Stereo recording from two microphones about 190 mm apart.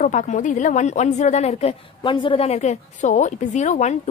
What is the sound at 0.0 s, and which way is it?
Speech, 40° left (ahead or behind).